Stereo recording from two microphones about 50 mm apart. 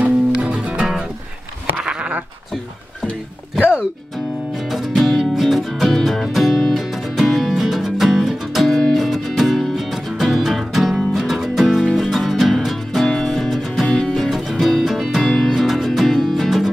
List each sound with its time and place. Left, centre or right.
0.0 s music: right
1.8 s sheep: centre
4.6 s music: centre